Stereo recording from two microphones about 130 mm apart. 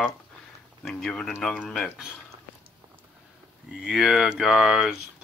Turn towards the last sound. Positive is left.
turn(degrees=0)  # may be behind; listen again after turning